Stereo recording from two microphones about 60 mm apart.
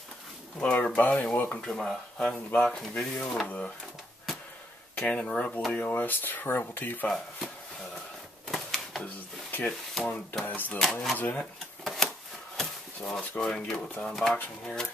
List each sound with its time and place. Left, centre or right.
0.6 s speech: centre
1.6 s speech: centre
4.9 s speech: centre
5.7 s speech: left
8.5 s typewriter: centre
10.0 s speech: centre
10.4 s speech: left
10.8 s speech: centre
11.1 s speech: left
11.8 s typewriter: centre
12.5 s a sound: centre
13.4 s speech: centre